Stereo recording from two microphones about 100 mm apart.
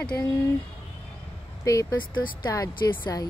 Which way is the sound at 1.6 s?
35° left (ahead or behind).